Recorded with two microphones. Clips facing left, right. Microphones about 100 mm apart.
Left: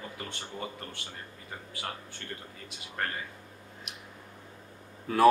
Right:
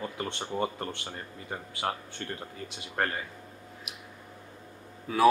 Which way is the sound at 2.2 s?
35° right (ahead or behind).